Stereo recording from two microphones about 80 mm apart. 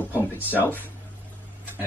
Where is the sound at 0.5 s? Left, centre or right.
Left.